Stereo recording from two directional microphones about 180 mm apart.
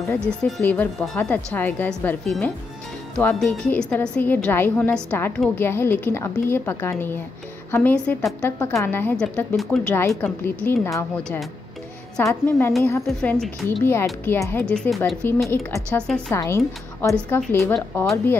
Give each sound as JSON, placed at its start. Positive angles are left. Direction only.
{"t": 0.3, "sound": "a woman's voice", "side_deg": 5}
{"t": 8.5, "sound": "a woman's voice", "side_deg": 15}
{"t": 12.2, "sound": "a woman's voice", "side_deg": 15}
{"t": 13.0, "sound": "a woman's voice", "side_deg": 5}
{"t": 14.2, "sound": "a woman's voice", "side_deg": 10}